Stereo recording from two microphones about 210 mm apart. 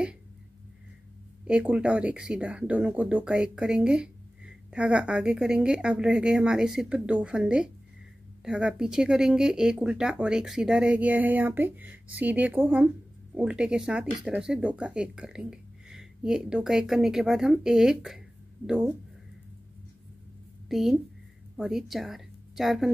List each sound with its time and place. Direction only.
1.4 s speech: 5° right (ahead or behind)
20.6 s a woman's voice: centre (ahead or behind)